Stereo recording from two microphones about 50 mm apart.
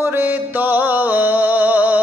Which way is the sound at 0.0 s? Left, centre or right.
Right.